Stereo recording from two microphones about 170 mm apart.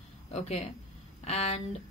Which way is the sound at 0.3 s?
40° left (ahead or behind).